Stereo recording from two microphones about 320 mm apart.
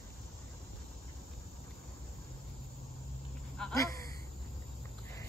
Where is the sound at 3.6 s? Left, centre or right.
Centre.